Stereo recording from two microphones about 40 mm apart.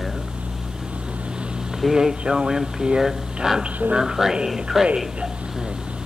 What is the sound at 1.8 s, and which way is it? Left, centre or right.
Speech, centre.